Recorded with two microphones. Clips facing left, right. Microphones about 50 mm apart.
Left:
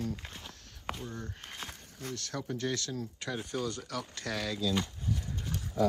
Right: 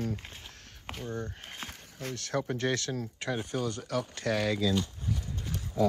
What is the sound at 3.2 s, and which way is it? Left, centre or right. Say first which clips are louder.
Speech: right 3 dB; right.